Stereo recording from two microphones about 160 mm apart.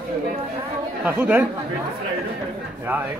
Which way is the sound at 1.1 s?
10° right (ahead or behind).